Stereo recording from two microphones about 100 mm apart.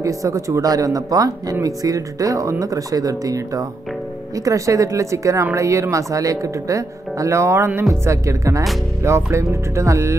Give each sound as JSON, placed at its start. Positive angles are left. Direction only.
{"t": 0.0, "sound": "speech", "side_deg": -35}